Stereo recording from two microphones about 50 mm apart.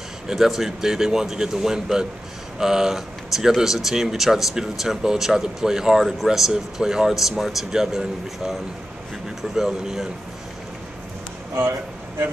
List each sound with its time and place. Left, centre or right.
0.3 s speech: centre
11.5 s speech: right